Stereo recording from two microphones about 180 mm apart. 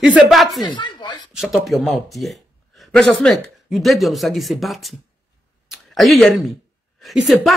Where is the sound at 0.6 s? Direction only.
25° left (ahead or behind).